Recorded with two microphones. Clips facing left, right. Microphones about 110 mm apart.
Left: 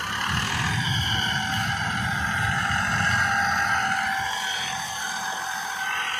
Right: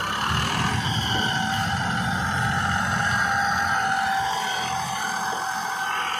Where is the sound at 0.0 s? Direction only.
50° right (ahead or behind).